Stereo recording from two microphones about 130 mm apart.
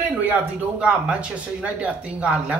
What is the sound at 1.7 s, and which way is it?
Speech, 10° right (ahead or behind).